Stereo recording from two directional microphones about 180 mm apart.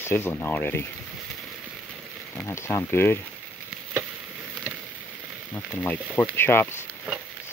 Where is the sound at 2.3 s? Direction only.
15° left (ahead or behind).